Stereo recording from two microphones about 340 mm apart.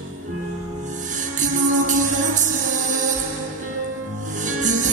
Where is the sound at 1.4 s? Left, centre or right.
Right.